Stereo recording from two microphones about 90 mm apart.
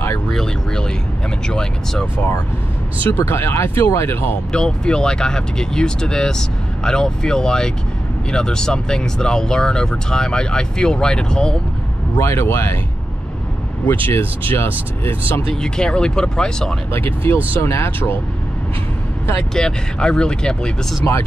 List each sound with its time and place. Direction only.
0.3 s speech: 5° left (ahead or behind)
3.0 s speech: 25° left (ahead or behind)
4.5 s speech: 10° left (ahead or behind)
12.2 s speech: 30° left (ahead or behind)
14.0 s speech: 25° left (ahead or behind)
15.5 s speech: 10° left (ahead or behind)
17.6 s speech: 30° left (ahead or behind)
19.5 s speech: 10° left (ahead or behind)